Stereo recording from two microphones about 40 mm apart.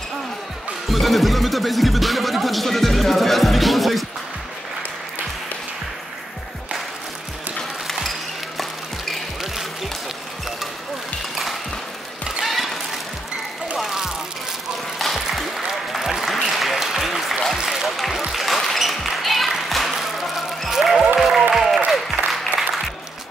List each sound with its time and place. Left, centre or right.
0.8 s music: centre
8.5 s music: centre
12.4 s a sound: centre
15.0 s applause: centre
17.6 s a sound: centre
18.3 s basketball bounce: centre
19.7 s a sound: centre
20.6 s music: centre
21.2 s applause: centre